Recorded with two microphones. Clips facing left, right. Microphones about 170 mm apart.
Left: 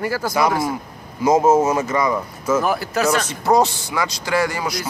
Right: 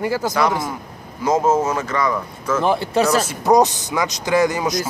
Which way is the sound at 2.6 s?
25° right (ahead or behind).